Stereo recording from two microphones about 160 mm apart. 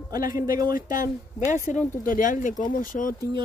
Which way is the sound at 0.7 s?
55° left (ahead or behind).